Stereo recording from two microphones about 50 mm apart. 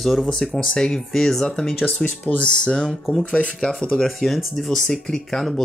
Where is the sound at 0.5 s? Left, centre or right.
Centre.